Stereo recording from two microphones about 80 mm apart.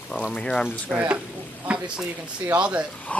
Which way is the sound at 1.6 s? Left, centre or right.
Centre.